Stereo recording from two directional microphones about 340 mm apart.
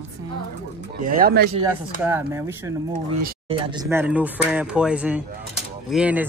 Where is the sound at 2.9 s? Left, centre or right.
Right.